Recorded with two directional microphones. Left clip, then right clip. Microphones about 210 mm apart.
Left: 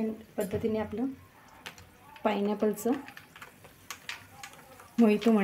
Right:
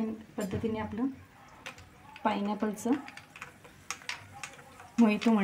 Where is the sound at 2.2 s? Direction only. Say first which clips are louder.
Left 2 dB; 30° left (ahead or behind).